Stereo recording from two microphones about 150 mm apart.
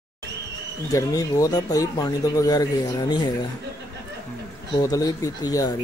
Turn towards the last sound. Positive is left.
turn(degrees=25)  # may be behind; listen again after turning